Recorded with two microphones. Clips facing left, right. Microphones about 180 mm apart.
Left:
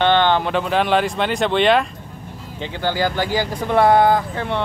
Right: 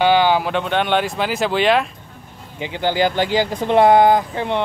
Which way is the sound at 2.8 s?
20° right (ahead or behind).